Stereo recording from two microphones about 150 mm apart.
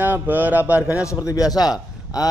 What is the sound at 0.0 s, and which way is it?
Speech, 15° right (ahead or behind).